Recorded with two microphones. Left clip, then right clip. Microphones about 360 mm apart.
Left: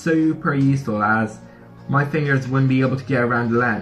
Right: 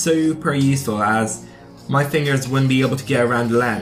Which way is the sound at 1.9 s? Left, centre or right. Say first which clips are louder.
Right 2 dB; centre.